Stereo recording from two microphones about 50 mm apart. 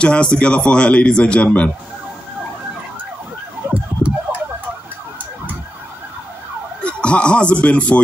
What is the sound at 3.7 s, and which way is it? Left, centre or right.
Emergency vehicle, right.